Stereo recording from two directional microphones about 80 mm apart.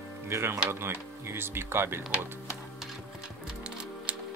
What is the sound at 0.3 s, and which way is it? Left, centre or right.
Speech, right.